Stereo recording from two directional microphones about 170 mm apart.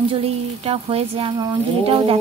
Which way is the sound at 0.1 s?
35° right (ahead or behind).